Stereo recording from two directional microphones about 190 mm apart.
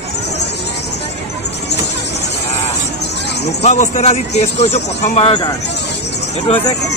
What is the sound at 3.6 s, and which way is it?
A man's voice, 40° left (ahead or behind).